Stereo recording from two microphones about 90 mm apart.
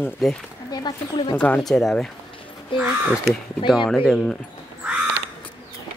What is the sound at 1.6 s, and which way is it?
Speech, 5° left (ahead or behind).